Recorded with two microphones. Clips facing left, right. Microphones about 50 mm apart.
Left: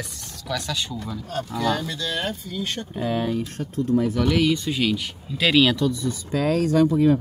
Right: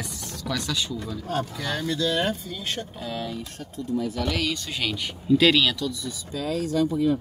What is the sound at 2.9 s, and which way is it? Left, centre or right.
Speech, left.